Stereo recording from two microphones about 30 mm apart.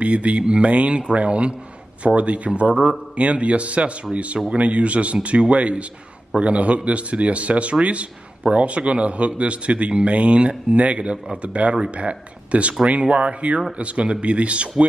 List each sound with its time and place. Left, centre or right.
0.0 s a man's voice: right
0.4 s a man's voice: right